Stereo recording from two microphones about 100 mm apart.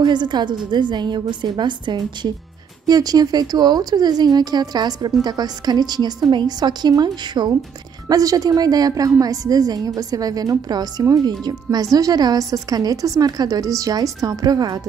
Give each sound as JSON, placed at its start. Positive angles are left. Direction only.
{"t": 0.0, "sound": "a woman's voice", "side_deg": -50}